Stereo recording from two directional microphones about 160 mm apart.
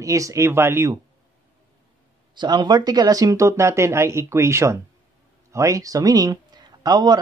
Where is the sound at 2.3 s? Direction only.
25° right (ahead or behind).